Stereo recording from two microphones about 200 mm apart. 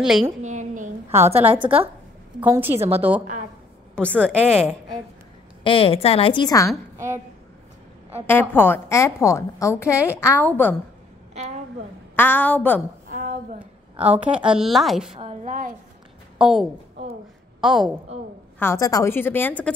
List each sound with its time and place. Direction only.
0.0 s speech: centre (ahead or behind)
0.4 s a sound: 40° right (ahead or behind)
1.1 s a woman's voice: 10° right (ahead or behind)
3.9 s speech: 5° left (ahead or behind)
5.6 s a woman's voice: 25° left (ahead or behind)
8.3 s a woman's voice: 10° left (ahead or behind)
11.3 s a sound: 35° right (ahead or behind)
12.2 s a woman's voice: 10° left (ahead or behind)
13.1 s a sound: 40° right (ahead or behind)
13.9 s a woman's voice: 5° right (ahead or behind)
15.1 s a woman's voice: 30° right (ahead or behind)
16.3 s a woman's voice: centre (ahead or behind)
18.6 s a woman's voice: 15° left (ahead or behind)